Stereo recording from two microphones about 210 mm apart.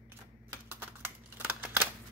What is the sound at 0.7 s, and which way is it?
Typing, 10° right (ahead or behind).